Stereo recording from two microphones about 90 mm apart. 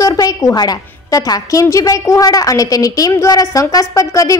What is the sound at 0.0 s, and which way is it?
A woman's voice, 40° left (ahead or behind).